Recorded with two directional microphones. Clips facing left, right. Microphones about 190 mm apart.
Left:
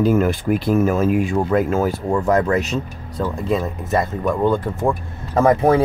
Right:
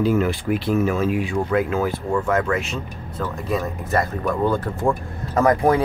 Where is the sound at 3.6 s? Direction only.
20° left (ahead or behind).